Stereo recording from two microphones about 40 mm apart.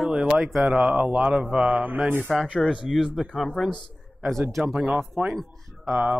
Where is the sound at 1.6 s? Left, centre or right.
Right.